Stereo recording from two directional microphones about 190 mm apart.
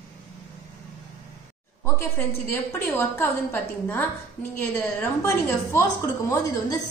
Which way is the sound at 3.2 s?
10° left (ahead or behind).